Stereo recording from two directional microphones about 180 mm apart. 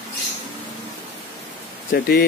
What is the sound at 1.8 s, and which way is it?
Speech, 60° left (ahead or behind).